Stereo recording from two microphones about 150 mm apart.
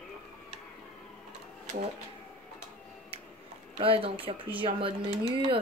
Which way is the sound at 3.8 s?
35° right (ahead or behind).